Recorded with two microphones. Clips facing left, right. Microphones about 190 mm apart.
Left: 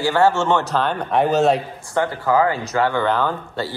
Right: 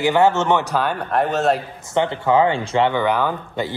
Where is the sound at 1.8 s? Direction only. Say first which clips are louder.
Right 3 dB; 20° right (ahead or behind).